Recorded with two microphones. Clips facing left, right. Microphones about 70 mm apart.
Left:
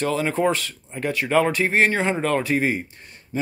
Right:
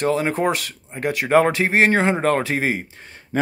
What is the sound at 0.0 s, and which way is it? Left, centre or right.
Speech, right.